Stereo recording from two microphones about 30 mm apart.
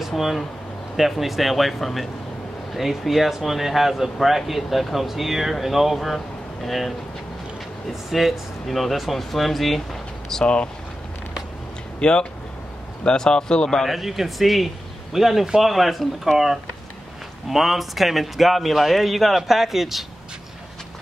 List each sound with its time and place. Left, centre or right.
0.9 s speech: centre
2.7 s speech: centre
5.9 s speech: centre
7.9 s speech: centre
10.4 s speech: left
12.0 s speech: left
13.8 s speech: centre
17.5 s speech: centre